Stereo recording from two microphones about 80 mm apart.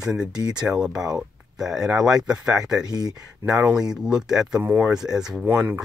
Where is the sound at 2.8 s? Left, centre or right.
Right.